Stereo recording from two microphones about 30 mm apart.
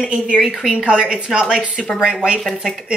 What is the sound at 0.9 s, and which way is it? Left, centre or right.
A woman's voice, right.